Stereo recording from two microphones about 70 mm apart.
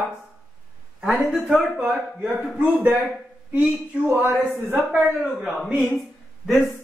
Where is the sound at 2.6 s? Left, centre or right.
Right.